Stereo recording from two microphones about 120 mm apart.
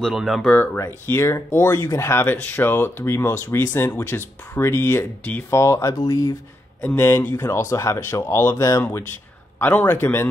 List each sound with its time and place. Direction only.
0.0 s speech: centre (ahead or behind)
0.7 s speech: 20° left (ahead or behind)
5.6 s speech: 25° left (ahead or behind)
6.8 s a man's voice: 15° left (ahead or behind)